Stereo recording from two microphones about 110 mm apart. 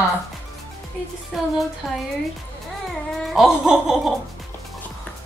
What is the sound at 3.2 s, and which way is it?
Speech, centre (ahead or behind).